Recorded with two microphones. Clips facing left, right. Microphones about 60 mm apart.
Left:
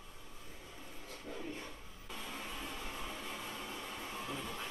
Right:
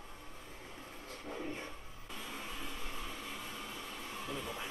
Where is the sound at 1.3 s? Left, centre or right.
Right.